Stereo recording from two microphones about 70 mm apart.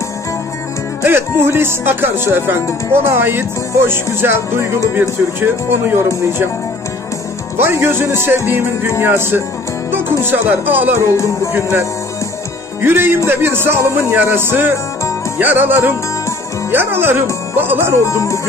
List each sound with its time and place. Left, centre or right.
1.0 s speech: right
7.5 s speech: right
11.0 s speech: left
12.8 s speech: right
18.0 s speech: left